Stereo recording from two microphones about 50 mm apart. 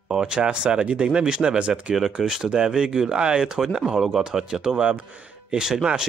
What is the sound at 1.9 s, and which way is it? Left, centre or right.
Speech, centre.